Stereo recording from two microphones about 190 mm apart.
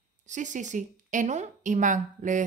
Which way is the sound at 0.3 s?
40° right (ahead or behind).